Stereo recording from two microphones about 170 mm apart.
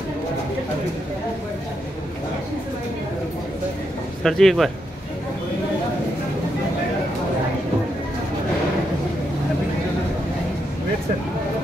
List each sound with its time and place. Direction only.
4.2 s speech: centre (ahead or behind)